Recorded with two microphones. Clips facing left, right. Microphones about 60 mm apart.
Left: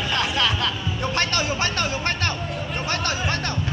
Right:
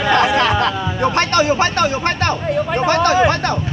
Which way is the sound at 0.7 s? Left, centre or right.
Right.